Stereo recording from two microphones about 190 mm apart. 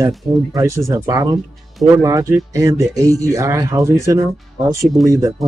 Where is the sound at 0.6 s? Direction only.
15° right (ahead or behind).